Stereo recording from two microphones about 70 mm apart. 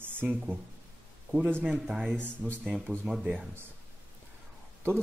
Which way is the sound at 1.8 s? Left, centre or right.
Centre.